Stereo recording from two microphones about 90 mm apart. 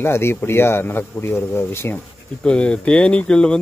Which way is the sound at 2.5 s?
10° left (ahead or behind).